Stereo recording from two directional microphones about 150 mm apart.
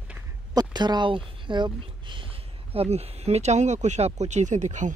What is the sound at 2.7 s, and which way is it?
Speech, 40° right (ahead or behind).